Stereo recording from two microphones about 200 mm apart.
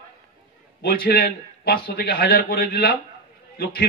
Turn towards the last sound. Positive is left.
turn(degrees=50)  # may be behind; listen again after turning